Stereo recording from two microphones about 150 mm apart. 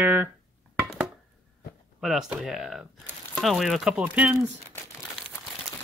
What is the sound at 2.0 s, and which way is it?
Speech, centre (ahead or behind).